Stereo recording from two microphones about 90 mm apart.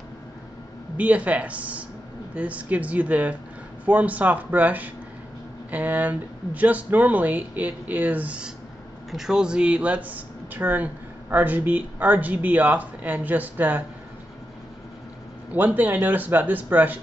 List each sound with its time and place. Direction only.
0.9 s speech: 15° right (ahead or behind)
15.5 s speech: 20° right (ahead or behind)